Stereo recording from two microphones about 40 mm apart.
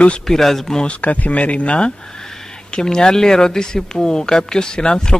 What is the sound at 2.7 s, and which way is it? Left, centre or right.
Speech, centre.